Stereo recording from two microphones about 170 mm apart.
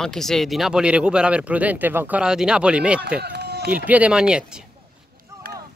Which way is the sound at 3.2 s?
75° right (ahead or behind).